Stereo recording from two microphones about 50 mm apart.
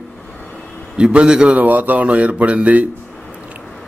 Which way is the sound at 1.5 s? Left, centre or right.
Right.